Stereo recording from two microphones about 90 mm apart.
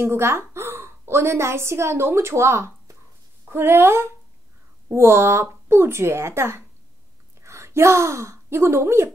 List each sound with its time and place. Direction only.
0.0 s a woman's voice: 30° right (ahead or behind)